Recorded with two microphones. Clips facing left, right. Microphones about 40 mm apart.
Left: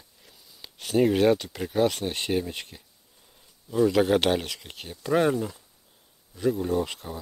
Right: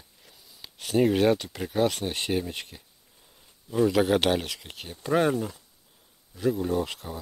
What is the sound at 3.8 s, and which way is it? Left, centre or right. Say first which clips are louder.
Speech: left 1 dB; centre.